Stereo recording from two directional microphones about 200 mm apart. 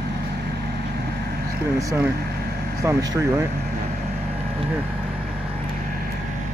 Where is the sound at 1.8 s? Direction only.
15° right (ahead or behind).